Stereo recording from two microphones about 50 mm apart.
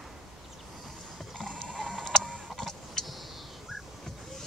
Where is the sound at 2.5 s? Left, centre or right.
Centre.